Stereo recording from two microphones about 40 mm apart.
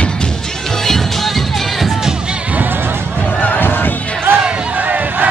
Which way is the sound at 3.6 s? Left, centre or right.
Left.